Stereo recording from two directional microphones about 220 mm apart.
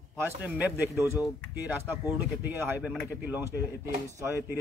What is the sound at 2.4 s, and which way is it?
Speech, 10° right (ahead or behind).